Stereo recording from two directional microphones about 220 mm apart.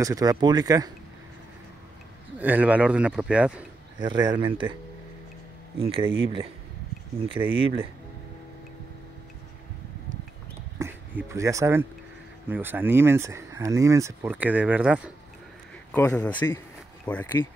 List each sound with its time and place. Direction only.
0.0 s speech: 15° right (ahead or behind)
2.3 s a man's voice: 5° right (ahead or behind)
4.0 s speech: 20° right (ahead or behind)
5.8 s speech: 25° right (ahead or behind)
7.5 s speech: 25° right (ahead or behind)
10.8 s speech: 10° right (ahead or behind)
15.9 s speech: 5° left (ahead or behind)